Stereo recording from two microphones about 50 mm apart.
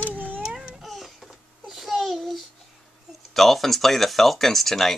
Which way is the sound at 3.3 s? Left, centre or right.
Centre.